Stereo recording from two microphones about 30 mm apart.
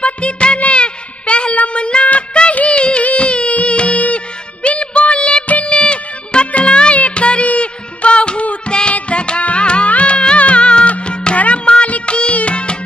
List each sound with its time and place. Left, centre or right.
0.0 s music of bollywood: left
0.6 s shofar: left
1.7 s child singing: left
2.0 s music: left
2.7 s music of bollywood: left
3.2 s music: left
5.7 s music of bollywood: left
6.4 s music of bollywood: left
7.0 s music: left
11.6 s music of bollywood: left
12.1 s music: left